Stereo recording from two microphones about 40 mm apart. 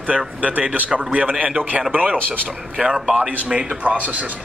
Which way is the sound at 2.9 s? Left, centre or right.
Centre.